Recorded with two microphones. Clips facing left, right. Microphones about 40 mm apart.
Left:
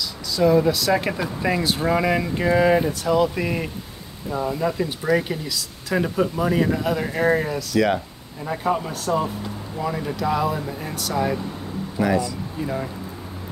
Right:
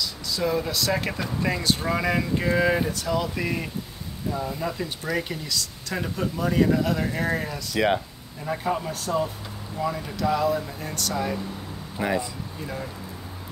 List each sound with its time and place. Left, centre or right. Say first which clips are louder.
0.0 s speech: left 7 dB; centre
4.3 s speech: left 5 dB; left
4.6 s speech: left 6 dB; centre
7.7 s speech: left 2 dB; centre
8.5 s speech: left 3 dB; centre
12.0 s speech: left 5 dB; right